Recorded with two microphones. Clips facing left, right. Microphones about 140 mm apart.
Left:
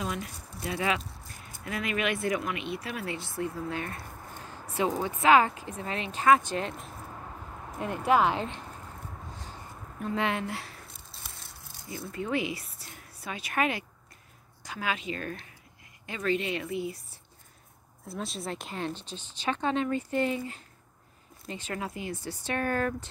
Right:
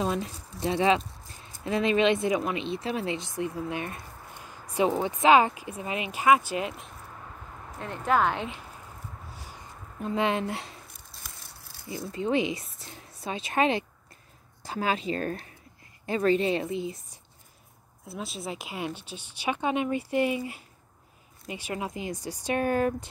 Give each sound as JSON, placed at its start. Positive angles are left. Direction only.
{"t": 0.0, "sound": "speech", "side_deg": -30}
{"t": 7.8, "sound": "speech", "side_deg": 10}
{"t": 9.3, "sound": "a sound", "side_deg": -10}
{"t": 9.9, "sound": "speech", "side_deg": -20}
{"t": 11.2, "sound": "a sound", "side_deg": 20}
{"t": 11.9, "sound": "a woman's voice", "side_deg": -20}
{"t": 18.0, "sound": "speech", "side_deg": 0}